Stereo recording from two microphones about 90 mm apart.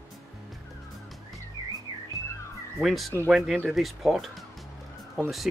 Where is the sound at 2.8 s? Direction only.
Centre (ahead or behind).